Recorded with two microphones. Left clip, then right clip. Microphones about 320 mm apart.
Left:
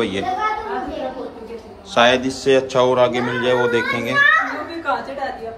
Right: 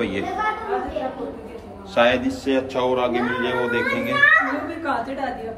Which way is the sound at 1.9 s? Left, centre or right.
Centre.